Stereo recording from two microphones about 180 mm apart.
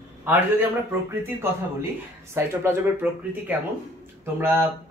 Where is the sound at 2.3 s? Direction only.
10° right (ahead or behind).